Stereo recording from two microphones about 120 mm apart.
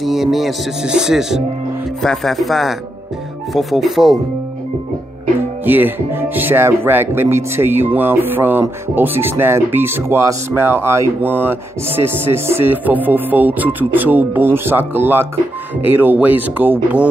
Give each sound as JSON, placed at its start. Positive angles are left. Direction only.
{"t": 0.0, "sound": "speech", "side_deg": 0}
{"t": 5.7, "sound": "speech", "side_deg": -15}